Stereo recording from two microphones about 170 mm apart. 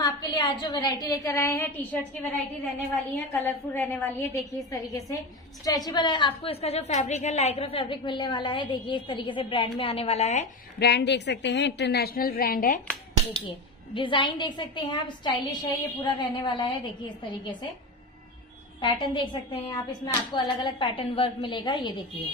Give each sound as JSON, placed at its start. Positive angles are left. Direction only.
{"t": 0.0, "sound": "a woman's voice", "side_deg": 25}
{"t": 3.3, "sound": "a woman's voice", "side_deg": 10}
{"t": 10.8, "sound": "a woman's voice", "side_deg": 80}
{"t": 13.9, "sound": "a woman's voice", "side_deg": 30}
{"t": 18.8, "sound": "a woman's voice", "side_deg": 30}